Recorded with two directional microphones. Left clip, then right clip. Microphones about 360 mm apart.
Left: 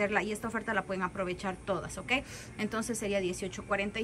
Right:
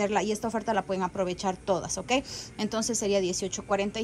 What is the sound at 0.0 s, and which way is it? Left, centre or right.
A woman's voice, centre.